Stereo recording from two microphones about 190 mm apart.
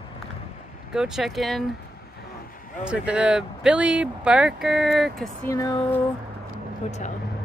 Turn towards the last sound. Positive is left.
turn(degrees=35)  # may be behind; listen again after turning